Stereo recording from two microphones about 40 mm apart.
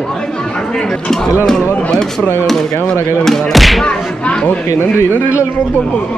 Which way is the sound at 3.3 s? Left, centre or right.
Centre.